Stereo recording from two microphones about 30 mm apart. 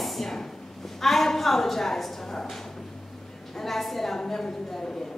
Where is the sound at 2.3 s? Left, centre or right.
Centre.